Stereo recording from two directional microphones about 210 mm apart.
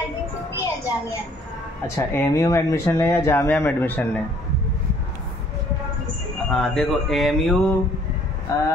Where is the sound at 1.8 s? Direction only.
10° left (ahead or behind).